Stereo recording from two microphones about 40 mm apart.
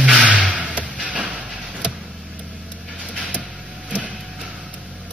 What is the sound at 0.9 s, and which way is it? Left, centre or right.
Vehicle, right.